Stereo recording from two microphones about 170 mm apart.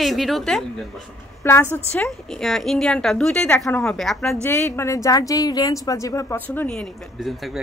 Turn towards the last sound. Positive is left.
turn(degrees=0)  # may be behind; listen again after turning